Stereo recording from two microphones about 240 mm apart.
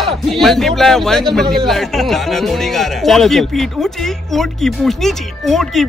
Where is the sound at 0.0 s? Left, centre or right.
Centre.